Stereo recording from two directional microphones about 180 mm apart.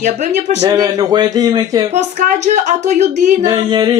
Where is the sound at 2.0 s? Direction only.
40° right (ahead or behind).